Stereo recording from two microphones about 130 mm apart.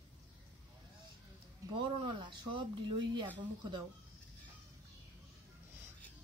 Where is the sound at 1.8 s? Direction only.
40° right (ahead or behind).